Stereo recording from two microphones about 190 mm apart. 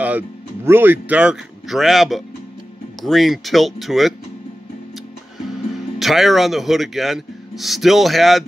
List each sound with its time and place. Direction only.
0.7 s speech: 10° right (ahead or behind)
5.9 s speech: centre (ahead or behind)